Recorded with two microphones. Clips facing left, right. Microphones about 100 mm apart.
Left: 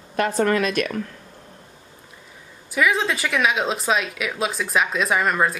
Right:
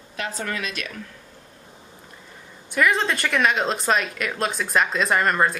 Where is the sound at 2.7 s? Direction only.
Centre (ahead or behind).